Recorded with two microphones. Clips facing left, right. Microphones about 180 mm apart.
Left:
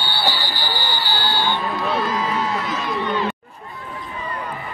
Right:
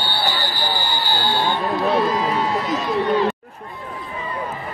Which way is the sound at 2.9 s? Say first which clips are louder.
Right 5 dB; 35° right (ahead or behind).